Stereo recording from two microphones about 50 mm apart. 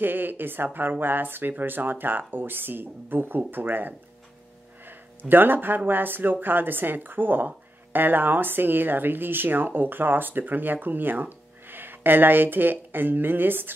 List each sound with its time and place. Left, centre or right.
0.0 s a woman's voice: right
5.3 s a woman's voice: right